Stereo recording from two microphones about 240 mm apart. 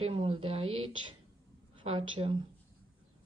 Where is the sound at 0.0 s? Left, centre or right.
Right.